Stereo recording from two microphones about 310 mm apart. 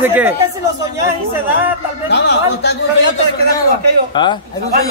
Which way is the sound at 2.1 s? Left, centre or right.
Left.